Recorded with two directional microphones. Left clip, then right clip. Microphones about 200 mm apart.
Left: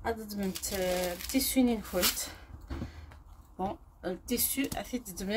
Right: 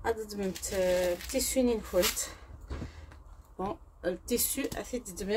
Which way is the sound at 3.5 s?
10° right (ahead or behind).